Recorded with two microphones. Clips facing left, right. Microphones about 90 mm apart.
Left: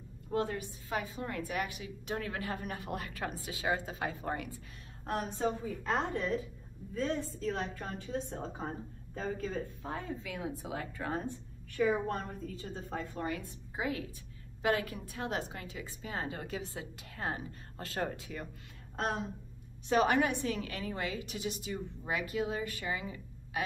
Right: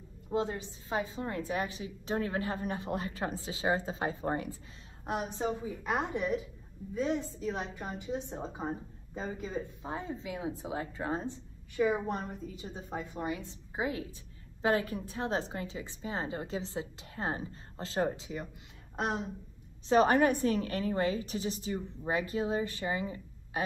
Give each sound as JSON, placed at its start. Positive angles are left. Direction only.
{"t": 0.3, "sound": "a woman's voice", "side_deg": -20}
{"t": 5.0, "sound": "a woman's voice", "side_deg": -15}
{"t": 19.9, "sound": "a woman's voice", "side_deg": -35}